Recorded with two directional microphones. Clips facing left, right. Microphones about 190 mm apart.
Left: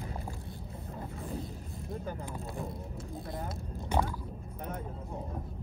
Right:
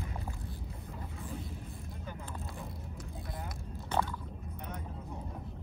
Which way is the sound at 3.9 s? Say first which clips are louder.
Left 2 dB; 15° left (ahead or behind).